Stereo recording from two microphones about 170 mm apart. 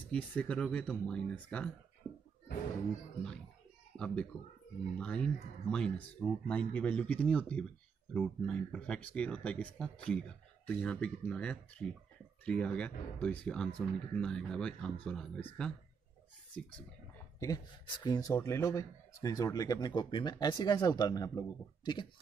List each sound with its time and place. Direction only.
0.1 s speech: 5° left (ahead or behind)
3.9 s speech: 5° left (ahead or behind)
17.4 s speech: 25° left (ahead or behind)